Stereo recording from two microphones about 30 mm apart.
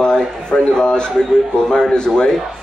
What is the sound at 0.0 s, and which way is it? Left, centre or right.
A man's voice, left.